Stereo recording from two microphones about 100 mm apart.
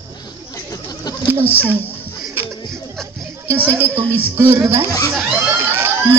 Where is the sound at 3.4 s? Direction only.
20° right (ahead or behind).